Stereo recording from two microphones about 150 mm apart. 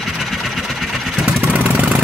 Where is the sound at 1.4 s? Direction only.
10° right (ahead or behind).